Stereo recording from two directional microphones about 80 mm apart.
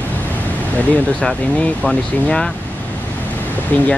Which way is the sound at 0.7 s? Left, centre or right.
Centre.